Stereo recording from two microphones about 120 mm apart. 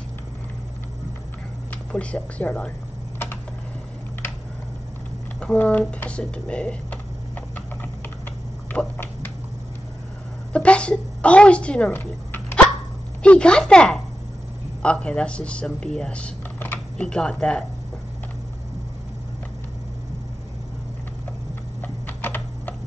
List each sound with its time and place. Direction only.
1.7 s speech: 10° left (ahead or behind)
5.4 s speech: 10° left (ahead or behind)
8.7 s a sound: 15° left (ahead or behind)
10.5 s a woman's voice: 10° left (ahead or behind)
21.8 s typing: 15° left (ahead or behind)